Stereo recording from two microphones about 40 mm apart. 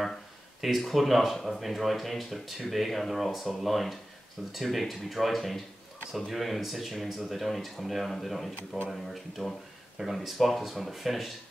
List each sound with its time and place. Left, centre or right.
0.6 s speech: centre
9.4 s speech: centre
10.0 s speech: centre